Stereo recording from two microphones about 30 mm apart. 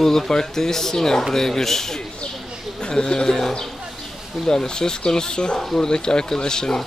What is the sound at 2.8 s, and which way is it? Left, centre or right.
Speech, left.